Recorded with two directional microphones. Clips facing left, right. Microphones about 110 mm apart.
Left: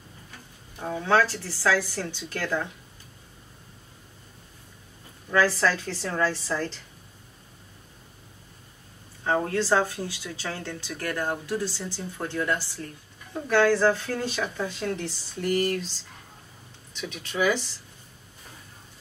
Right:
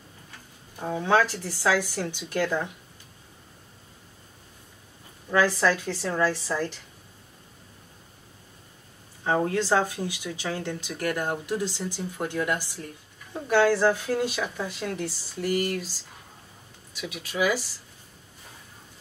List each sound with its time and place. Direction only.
0.7 s speech: 15° right (ahead or behind)
5.3 s speech: 15° right (ahead or behind)
9.2 s speech: 15° right (ahead or behind)
16.9 s speech: 5° right (ahead or behind)